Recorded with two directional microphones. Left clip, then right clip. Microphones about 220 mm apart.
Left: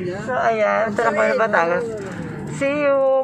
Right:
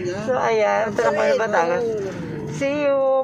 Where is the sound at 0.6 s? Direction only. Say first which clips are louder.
Left 1 dB; 5° right (ahead or behind).